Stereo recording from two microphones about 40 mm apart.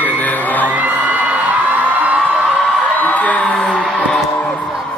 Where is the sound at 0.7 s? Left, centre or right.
Right.